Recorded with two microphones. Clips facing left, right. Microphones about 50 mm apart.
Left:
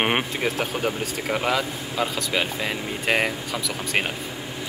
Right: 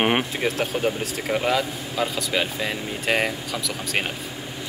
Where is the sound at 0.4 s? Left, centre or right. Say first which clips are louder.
Right 1 dB; centre.